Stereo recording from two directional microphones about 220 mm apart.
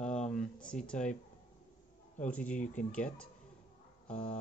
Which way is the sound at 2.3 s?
5° left (ahead or behind).